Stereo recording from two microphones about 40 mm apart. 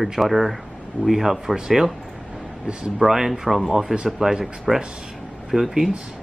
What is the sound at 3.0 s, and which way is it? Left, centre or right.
Speech, centre.